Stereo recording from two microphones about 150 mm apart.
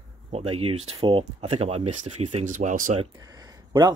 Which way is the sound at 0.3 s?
45° right (ahead or behind).